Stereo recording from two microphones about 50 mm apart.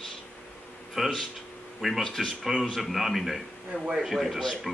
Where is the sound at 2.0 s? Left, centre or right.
Centre.